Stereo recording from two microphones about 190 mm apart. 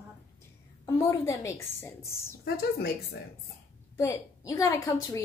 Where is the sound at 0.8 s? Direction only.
15° left (ahead or behind).